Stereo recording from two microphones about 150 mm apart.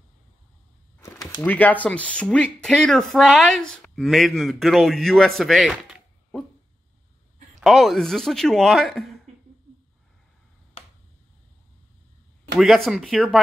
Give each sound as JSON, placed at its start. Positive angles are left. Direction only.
{"t": 1.0, "sound": "a sound", "side_deg": 25}
{"t": 1.4, "sound": "speech", "side_deg": 10}
{"t": 7.6, "sound": "speech", "side_deg": 0}
{"t": 12.5, "sound": "speech", "side_deg": 0}